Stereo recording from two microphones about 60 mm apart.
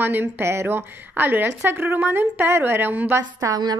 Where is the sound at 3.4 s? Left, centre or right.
Right.